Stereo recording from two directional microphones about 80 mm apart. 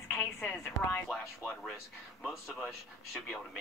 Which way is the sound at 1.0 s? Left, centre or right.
Centre.